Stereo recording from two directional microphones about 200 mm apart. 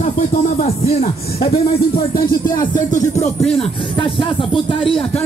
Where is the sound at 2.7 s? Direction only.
40° left (ahead or behind).